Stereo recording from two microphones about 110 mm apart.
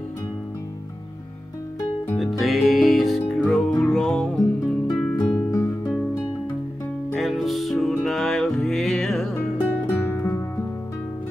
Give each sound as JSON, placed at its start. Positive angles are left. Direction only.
{"t": 2.1, "sound": "music", "side_deg": 0}
{"t": 5.5, "sound": "music", "side_deg": 30}
{"t": 7.2, "sound": "music", "side_deg": 0}